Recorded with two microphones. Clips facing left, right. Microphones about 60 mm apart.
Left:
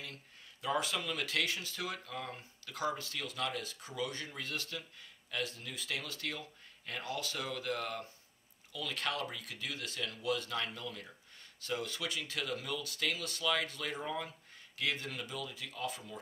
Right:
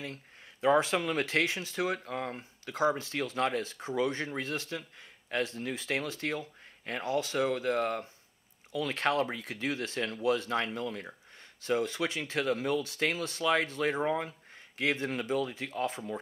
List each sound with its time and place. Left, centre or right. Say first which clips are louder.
0.0 s speech: right 7 dB; right